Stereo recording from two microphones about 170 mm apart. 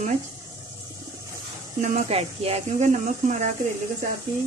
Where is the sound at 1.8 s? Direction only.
40° right (ahead or behind).